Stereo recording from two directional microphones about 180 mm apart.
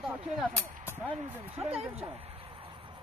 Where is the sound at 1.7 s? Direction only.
35° right (ahead or behind).